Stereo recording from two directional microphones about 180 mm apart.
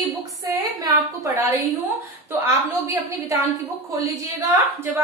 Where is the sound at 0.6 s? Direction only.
20° right (ahead or behind).